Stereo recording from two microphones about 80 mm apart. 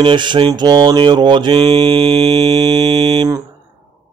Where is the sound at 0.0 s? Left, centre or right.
Right.